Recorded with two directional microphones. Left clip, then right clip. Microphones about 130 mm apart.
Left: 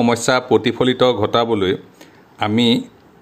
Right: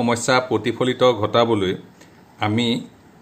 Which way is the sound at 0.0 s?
30° left (ahead or behind).